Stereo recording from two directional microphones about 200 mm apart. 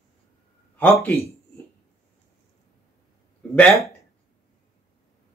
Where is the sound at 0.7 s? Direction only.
10° left (ahead or behind).